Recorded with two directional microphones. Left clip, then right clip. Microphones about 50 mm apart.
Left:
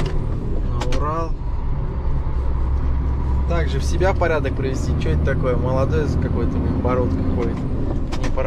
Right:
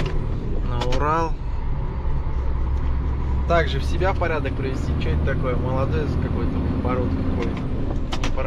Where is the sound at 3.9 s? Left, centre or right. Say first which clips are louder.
Left 4 dB; centre.